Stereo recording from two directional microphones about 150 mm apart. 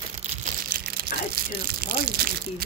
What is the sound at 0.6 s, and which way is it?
Crumpling, 80° right.